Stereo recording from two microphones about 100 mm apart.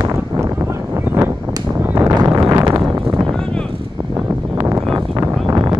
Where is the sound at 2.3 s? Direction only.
35° right (ahead or behind).